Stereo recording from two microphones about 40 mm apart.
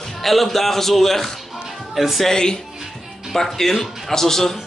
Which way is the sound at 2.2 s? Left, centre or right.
Centre.